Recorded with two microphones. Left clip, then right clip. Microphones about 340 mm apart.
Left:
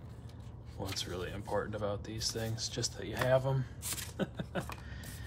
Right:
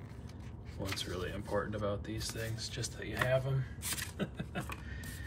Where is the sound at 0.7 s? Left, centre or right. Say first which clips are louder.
Even; centre.